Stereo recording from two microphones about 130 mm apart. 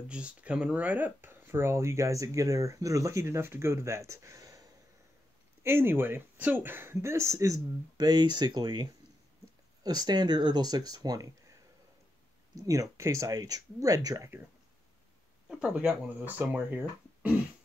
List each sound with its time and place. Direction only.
0.1 s speech: 10° right (ahead or behind); by 8.8 s 35° right (ahead or behind)
9.8 s speech: 30° right (ahead or behind)
12.5 s speech: 25° right (ahead or behind)
15.4 s speech: 10° right (ahead or behind)